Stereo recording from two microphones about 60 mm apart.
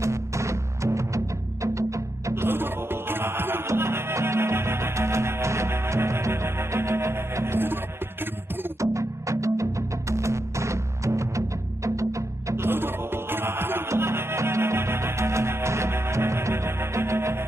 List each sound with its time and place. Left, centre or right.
0.0 s music: right
2.4 s music: right
8.8 s music: right
12.6 s music: right